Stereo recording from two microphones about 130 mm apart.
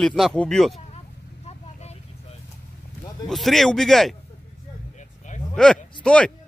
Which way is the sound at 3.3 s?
Centre (ahead or behind).